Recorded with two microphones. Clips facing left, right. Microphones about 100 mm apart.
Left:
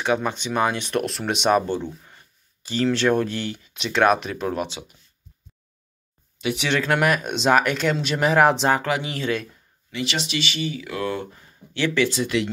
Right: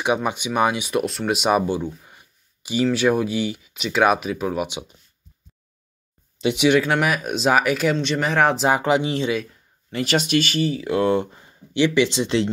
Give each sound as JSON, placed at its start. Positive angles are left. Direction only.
{"t": 0.0, "sound": "speech", "side_deg": -15}
{"t": 4.6, "sound": "speech", "side_deg": -20}
{"t": 6.4, "sound": "speech", "side_deg": -15}
{"t": 6.8, "sound": "speech", "side_deg": 0}
{"t": 8.6, "sound": "speech", "side_deg": -20}
{"t": 9.9, "sound": "speech", "side_deg": -45}